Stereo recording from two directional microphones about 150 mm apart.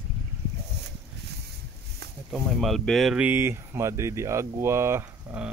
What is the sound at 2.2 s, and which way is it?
Speech, centre (ahead or behind).